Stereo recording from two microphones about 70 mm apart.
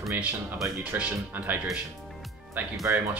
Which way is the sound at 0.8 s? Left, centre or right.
Right.